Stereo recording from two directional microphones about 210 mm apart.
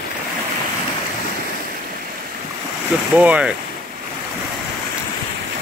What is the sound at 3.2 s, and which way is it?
Speech, 5° right (ahead or behind).